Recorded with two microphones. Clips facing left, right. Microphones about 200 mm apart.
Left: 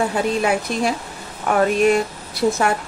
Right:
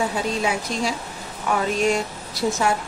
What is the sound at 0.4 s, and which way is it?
Speech, 60° left (ahead or behind).